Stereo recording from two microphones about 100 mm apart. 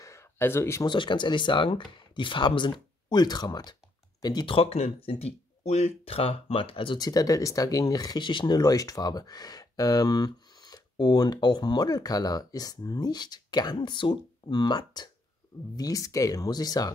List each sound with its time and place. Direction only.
0.0 s a sound: 30° left (ahead or behind)
0.8 s speech: 50° left (ahead or behind)
4.5 s speech: 80° left; by 7.0 s 65° left (ahead or behind)
7.0 s speech: 40° left (ahead or behind)
8.2 s speech: 55° left (ahead or behind)